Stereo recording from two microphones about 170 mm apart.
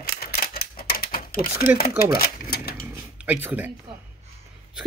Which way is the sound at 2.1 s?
60° left (ahead or behind).